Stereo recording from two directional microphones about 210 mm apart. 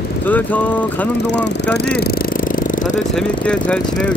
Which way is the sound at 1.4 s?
55° left (ahead or behind).